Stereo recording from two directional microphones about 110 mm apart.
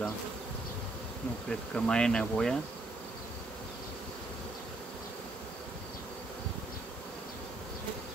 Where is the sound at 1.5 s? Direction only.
10° left (ahead or behind).